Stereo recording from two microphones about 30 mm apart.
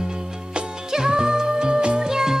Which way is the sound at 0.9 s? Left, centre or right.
Right.